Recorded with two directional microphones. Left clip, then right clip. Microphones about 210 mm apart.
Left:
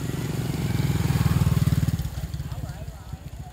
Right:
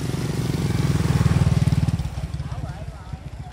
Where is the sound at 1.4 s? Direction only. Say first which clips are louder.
Right 3 dB; 40° left (ahead or behind).